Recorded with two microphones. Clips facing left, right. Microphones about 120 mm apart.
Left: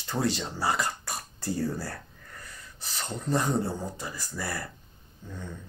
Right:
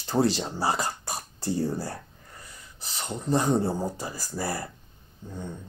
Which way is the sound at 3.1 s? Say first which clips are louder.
Right 3 dB; 20° right (ahead or behind).